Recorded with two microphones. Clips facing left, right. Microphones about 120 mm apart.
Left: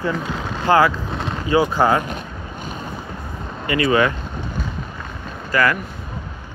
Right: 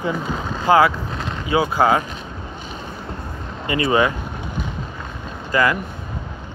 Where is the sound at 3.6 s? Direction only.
25° right (ahead or behind).